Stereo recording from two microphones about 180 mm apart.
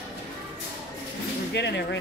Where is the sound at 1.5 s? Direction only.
75° left (ahead or behind).